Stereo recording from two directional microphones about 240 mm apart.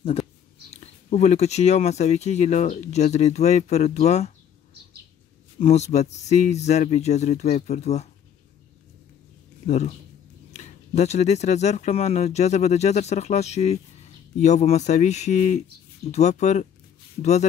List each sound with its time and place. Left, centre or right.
0.7 s speech: left
5.6 s speech: left
9.7 s speech: left